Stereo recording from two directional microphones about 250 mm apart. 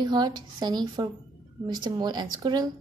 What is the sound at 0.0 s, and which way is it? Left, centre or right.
A woman's voice, centre.